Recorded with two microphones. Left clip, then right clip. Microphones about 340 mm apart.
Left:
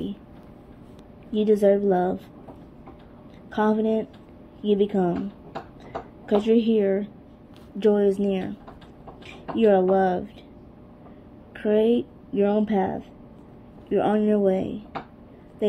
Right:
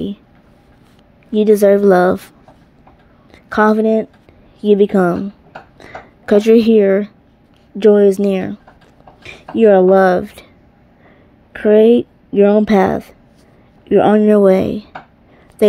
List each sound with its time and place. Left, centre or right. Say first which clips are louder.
1.3 s speech: right 9 dB; right
3.4 s speech: right 11 dB; right
5.8 s a sound: right 3 dB; right
7.8 s speech: right 11 dB; right
9.6 s speech: right 10 dB; right
11.5 s a woman's voice: right 12 dB; right